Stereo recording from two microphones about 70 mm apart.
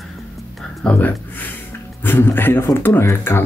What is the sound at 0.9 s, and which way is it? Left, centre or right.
Speech, left.